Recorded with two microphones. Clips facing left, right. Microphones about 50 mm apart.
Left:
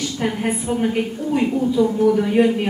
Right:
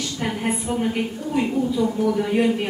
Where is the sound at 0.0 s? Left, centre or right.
Centre.